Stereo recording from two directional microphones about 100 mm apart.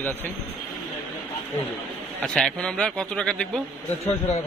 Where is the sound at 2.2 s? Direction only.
5° left (ahead or behind).